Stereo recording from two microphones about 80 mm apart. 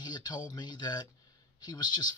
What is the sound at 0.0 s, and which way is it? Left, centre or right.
Speech, left.